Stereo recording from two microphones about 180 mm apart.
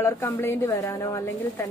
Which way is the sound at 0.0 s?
15° left (ahead or behind).